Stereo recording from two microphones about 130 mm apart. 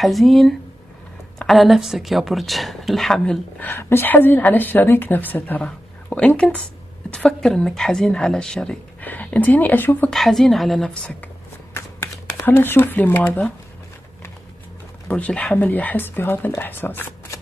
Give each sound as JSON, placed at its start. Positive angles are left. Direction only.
{"t": 0.0, "sound": "a woman's voice", "side_deg": 0}
{"t": 10.1, "sound": "speech", "side_deg": 0}
{"t": 12.4, "sound": "a woman's voice", "side_deg": 15}
{"t": 15.0, "sound": "a woman's voice", "side_deg": 10}